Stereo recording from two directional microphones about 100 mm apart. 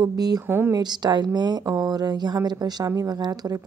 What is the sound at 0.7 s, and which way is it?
Speech, 45° right (ahead or behind).